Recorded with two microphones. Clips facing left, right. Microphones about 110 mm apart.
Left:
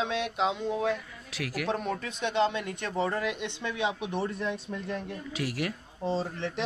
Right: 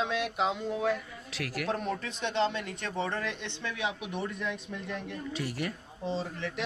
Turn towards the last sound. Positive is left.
turn(degrees=35)  # may be behind; listen again after turning